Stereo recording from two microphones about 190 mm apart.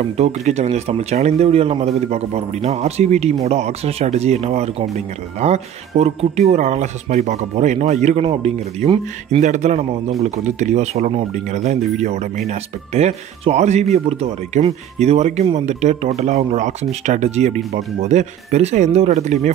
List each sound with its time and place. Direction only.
0.0 s speech: 35° right (ahead or behind)